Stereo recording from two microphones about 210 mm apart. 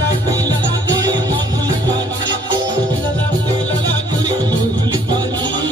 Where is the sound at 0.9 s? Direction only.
15° right (ahead or behind).